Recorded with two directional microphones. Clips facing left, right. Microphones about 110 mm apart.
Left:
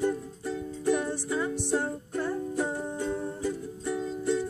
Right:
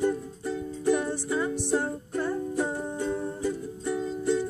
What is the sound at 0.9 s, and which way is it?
Music, 35° right (ahead or behind).